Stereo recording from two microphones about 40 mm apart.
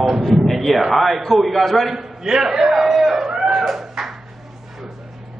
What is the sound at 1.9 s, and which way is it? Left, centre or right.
A man's voice, centre.